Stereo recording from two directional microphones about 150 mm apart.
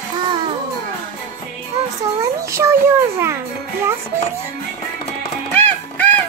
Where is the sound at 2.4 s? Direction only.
20° right (ahead or behind).